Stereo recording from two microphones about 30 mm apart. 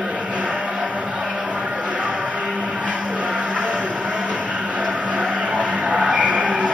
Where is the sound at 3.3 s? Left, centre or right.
Right.